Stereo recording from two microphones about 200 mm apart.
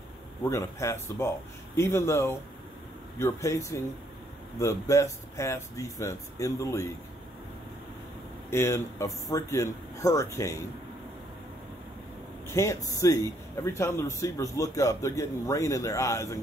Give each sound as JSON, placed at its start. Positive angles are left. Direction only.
{"t": 0.4, "sound": "a man's voice", "side_deg": 15}
{"t": 8.5, "sound": "a man's voice", "side_deg": 15}
{"t": 12.4, "sound": "a man's voice", "side_deg": 15}